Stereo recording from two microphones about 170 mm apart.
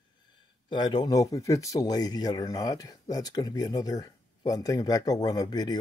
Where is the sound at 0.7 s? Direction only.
25° left (ahead or behind).